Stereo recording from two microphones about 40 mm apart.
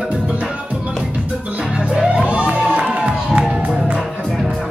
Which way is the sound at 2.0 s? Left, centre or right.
Right.